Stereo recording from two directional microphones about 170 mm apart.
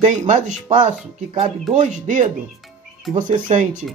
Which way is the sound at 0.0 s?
45° right (ahead or behind).